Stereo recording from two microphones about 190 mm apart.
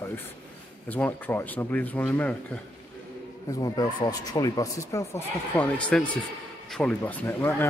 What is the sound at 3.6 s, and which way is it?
Speech, 20° left (ahead or behind).